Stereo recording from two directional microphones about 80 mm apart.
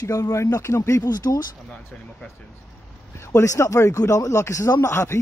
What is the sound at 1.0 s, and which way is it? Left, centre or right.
Speech, left.